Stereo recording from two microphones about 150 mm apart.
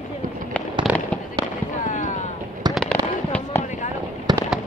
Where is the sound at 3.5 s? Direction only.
15° left (ahead or behind).